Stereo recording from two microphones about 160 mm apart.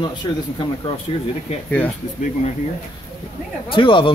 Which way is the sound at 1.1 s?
35° left (ahead or behind).